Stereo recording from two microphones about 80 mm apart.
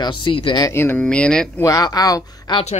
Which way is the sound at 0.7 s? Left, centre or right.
Left.